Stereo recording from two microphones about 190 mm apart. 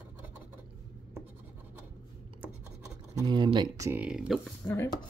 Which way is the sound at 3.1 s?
25° right (ahead or behind).